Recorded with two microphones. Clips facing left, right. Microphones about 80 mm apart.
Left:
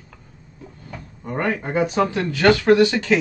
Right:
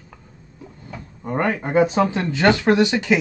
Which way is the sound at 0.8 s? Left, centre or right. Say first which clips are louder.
Right 2 dB; centre.